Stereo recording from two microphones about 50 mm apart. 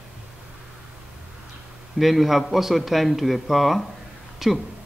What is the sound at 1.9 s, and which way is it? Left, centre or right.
A man's voice, centre.